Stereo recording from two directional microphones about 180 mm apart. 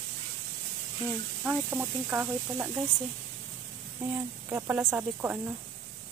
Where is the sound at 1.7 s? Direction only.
10° right (ahead or behind).